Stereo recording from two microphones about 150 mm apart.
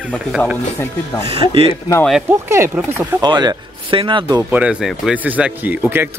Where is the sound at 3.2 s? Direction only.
30° right (ahead or behind).